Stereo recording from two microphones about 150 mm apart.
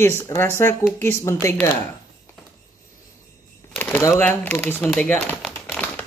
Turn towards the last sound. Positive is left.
turn(degrees=10)  # may be behind; listen again after turning